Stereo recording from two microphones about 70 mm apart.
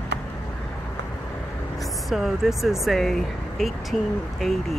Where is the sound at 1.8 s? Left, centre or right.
Centre.